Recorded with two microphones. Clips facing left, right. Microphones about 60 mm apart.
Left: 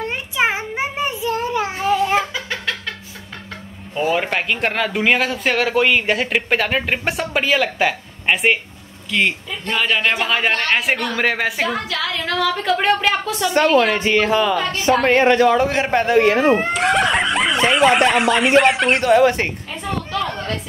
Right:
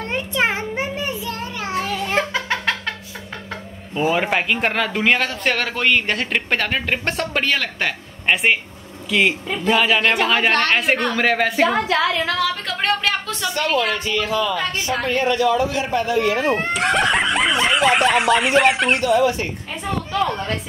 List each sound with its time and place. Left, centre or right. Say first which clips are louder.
0.0 s child singing: left 1 dB; centre
3.9 s speech: even; centre
11.9 s a sound: right 5 dB; right
12.3 s speech: left 3 dB; centre
13.9 s speech: left 5 dB; left
15.0 s a man's voice: left 5 dB; left
16.7 s speech: left 1 dB; centre
18.9 s a man's voice: left 3 dB; left
19.7 s speech: even; centre